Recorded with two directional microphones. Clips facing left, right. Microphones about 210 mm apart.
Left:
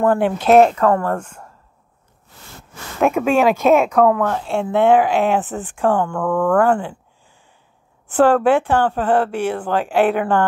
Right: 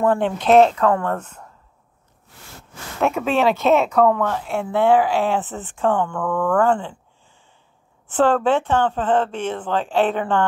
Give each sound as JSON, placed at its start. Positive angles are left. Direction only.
{"t": 0.1, "sound": "speech", "side_deg": 5}
{"t": 3.0, "sound": "speech", "side_deg": 15}
{"t": 4.5, "sound": "speech", "side_deg": 25}
{"t": 8.1, "sound": "speech", "side_deg": 15}